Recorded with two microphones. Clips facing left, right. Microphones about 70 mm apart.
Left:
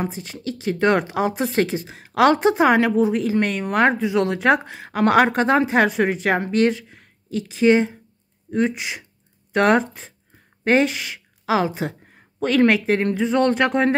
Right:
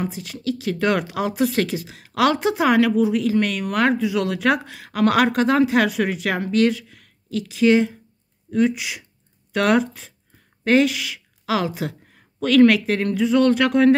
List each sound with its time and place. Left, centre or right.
0.0 s a woman's voice: left